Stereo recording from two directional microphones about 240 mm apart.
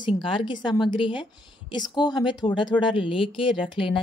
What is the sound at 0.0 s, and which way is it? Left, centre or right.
A woman's voice, left.